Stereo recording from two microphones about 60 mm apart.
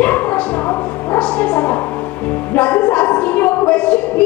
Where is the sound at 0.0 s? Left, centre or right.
Left.